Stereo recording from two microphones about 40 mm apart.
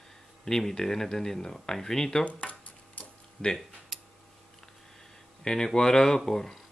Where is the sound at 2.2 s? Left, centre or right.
Left.